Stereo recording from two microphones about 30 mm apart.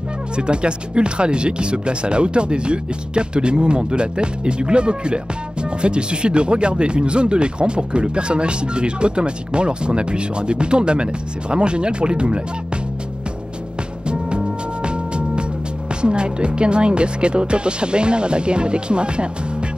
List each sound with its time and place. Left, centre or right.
0.4 s speech: right
14.0 s music: right
16.0 s speech: right